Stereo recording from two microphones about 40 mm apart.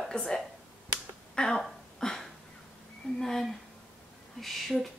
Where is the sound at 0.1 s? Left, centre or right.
Centre.